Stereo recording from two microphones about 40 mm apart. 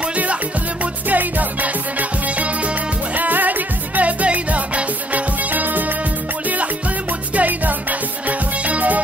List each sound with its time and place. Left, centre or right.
1.0 s music: right
3.2 s music: right
7.3 s music: right